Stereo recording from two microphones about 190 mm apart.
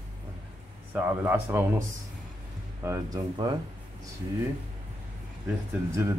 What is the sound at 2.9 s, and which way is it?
Speech, 20° right (ahead or behind).